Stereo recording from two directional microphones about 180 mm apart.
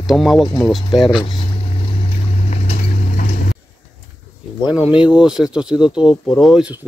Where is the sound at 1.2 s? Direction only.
30° left (ahead or behind); by 3.6 s 50° left (ahead or behind).